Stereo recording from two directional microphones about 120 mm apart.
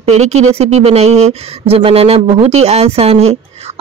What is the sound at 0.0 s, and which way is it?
Speech, 65° right (ahead or behind).